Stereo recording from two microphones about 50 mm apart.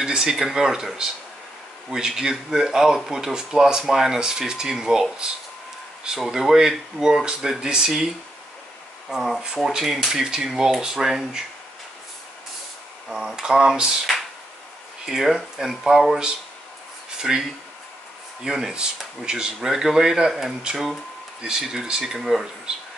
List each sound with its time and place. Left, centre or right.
0.0 s speech: centre
6.1 s speech: centre
9.1 s speech: centre
13.4 s speech: centre
15.0 s speech: centre
17.2 s speech: centre
21.4 s speech: centre